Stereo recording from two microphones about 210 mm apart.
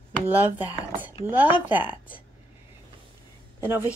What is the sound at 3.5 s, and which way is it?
Speech, 10° right (ahead or behind).